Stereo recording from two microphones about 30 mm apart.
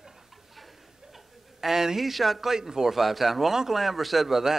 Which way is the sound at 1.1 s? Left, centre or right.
Centre.